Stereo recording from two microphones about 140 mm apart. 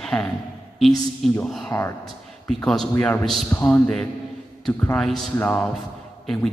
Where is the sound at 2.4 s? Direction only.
5° left (ahead or behind).